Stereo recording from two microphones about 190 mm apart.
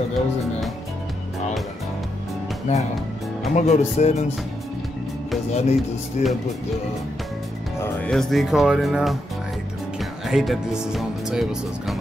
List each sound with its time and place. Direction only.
3.5 s speech: 35° left (ahead or behind)
5.5 s speech: 35° left (ahead or behind)
7.8 s speech: 5° left (ahead or behind)